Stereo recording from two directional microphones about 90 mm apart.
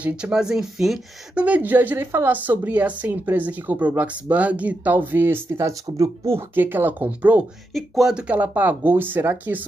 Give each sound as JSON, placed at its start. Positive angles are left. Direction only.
{"t": 0.0, "sound": "speech", "side_deg": -10}
{"t": 1.3, "sound": "speech", "side_deg": -15}
{"t": 7.7, "sound": "speech", "side_deg": -5}